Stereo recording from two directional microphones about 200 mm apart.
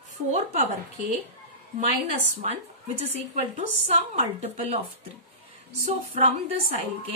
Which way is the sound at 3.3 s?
35° right (ahead or behind).